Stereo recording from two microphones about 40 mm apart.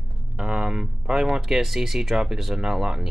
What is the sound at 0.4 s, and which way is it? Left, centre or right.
Speech, centre.